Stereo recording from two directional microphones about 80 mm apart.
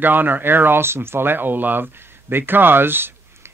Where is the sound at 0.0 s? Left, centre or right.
Right.